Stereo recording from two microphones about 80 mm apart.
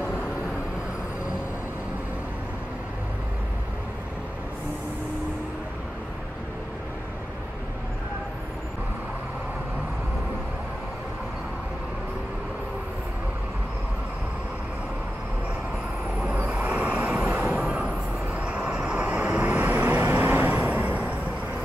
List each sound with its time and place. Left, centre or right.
16.3 s vehicle: right